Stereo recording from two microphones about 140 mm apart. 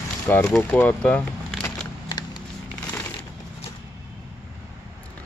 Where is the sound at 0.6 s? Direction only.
15° left (ahead or behind).